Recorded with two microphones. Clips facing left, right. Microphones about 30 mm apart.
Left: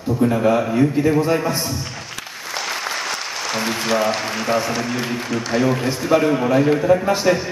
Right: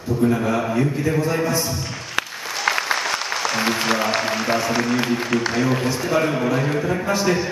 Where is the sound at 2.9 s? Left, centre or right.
Centre.